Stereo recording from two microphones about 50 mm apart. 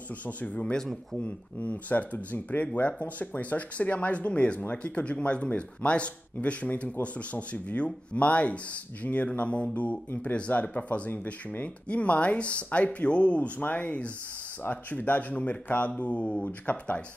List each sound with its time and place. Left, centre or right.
0.4 s speech: left
14.6 s speech: left